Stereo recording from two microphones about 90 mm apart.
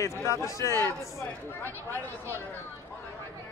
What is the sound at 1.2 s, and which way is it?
Speech, 25° left (ahead or behind).